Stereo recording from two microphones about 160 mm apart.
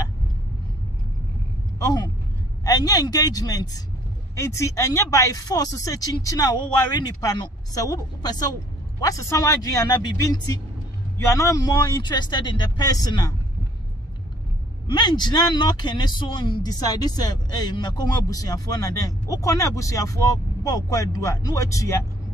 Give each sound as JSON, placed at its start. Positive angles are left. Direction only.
{"t": 2.6, "sound": "speech", "side_deg": 20}
{"t": 14.9, "sound": "speech", "side_deg": 25}